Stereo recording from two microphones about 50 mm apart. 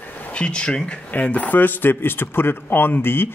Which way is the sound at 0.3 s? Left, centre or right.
Left.